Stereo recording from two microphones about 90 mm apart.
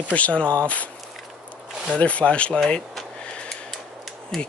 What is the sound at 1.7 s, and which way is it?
Zipper, 10° right (ahead or behind).